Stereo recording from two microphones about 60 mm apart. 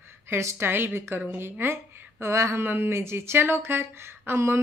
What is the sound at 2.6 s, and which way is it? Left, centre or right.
Speech, right.